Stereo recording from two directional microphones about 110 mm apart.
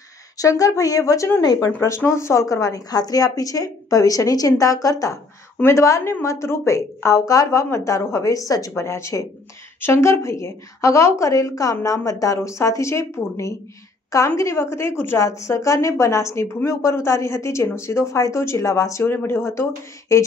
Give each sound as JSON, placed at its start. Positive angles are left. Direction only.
{"t": 0.4, "sound": "a woman's voice", "side_deg": 30}
{"t": 1.8, "sound": "a woman's voice", "side_deg": 25}